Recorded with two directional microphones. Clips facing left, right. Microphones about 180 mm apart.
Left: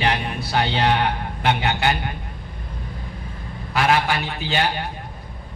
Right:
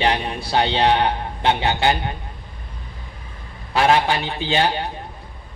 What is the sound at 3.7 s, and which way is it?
A man's voice, 30° right (ahead or behind).